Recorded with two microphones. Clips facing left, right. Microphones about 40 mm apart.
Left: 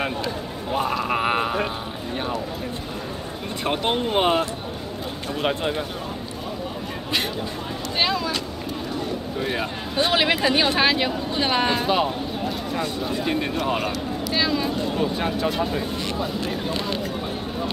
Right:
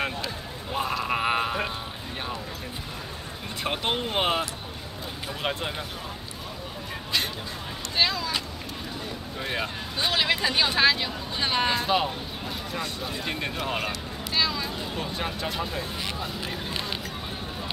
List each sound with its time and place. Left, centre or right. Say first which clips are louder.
0.0 s a sound: left 4 dB; centre
3.6 s speech: left 5 dB; centre
8.0 s speech: left 2 dB; centre
9.4 s speech: left 3 dB; centre
9.9 s speech: left 5 dB; centre
14.3 s a sound: left 4 dB; centre
14.8 s speech: left 7 dB; centre